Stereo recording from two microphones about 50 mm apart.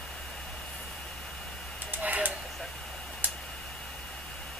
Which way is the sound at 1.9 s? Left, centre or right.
Right.